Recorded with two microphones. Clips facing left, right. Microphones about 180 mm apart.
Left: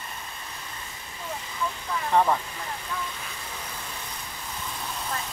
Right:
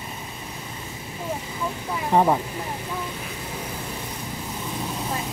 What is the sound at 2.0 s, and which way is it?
Speech, 25° right (ahead or behind).